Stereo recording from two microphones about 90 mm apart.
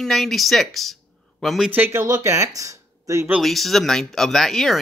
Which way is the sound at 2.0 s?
35° right (ahead or behind).